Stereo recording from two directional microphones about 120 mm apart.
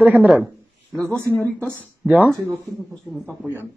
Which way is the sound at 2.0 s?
15° right (ahead or behind).